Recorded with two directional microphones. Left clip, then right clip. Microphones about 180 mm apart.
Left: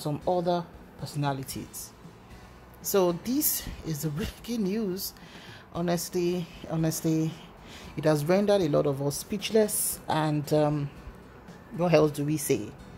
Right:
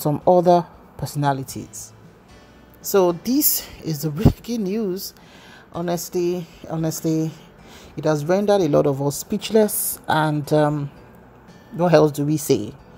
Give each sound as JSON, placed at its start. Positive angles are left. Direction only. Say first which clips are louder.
{"t": 0.2, "sound": "speech", "louder": "right 13 dB", "side_deg": -30}
{"t": 1.2, "sound": "a woman's voice", "louder": "right 10 dB", "side_deg": -15}
{"t": 11.8, "sound": "a woman's voice", "louder": "right 7 dB", "side_deg": -20}